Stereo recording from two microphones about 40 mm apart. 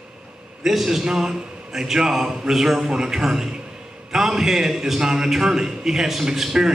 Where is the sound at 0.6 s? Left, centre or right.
Centre.